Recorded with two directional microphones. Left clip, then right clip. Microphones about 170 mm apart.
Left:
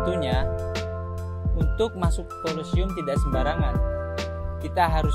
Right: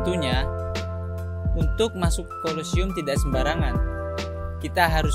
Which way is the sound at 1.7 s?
45° right (ahead or behind).